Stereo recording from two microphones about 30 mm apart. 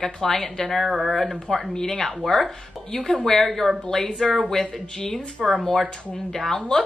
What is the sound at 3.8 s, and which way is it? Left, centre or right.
Speech, left.